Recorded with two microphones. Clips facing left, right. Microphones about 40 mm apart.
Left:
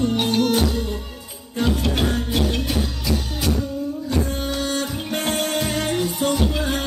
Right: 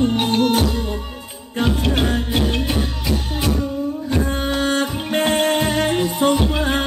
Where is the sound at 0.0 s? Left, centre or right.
Right.